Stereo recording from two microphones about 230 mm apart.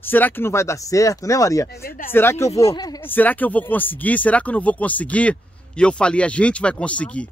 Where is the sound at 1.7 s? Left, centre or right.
Left.